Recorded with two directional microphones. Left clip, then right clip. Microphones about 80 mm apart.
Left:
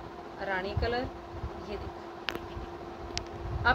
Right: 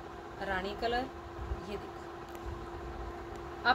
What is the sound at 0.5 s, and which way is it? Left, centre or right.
Speech, centre.